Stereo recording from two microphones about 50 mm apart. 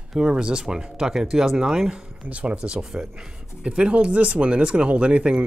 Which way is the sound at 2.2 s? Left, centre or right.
Right.